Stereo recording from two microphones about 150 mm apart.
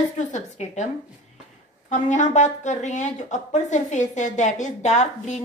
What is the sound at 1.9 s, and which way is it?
Speech, 55° left (ahead or behind).